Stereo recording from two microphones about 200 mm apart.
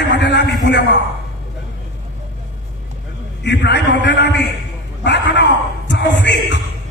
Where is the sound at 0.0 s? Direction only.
60° left (ahead or behind).